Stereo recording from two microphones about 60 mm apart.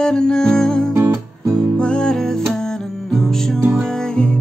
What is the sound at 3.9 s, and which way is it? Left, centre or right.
Music, centre.